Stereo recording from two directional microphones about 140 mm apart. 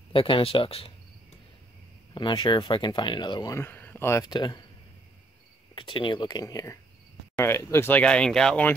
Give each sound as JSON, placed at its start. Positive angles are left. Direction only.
{"t": 0.1, "sound": "speech", "side_deg": 40}
{"t": 2.1, "sound": "speech", "side_deg": 35}
{"t": 3.5, "sound": "speech", "side_deg": 15}
{"t": 4.2, "sound": "speech", "side_deg": 30}
{"t": 5.8, "sound": "speech", "side_deg": 35}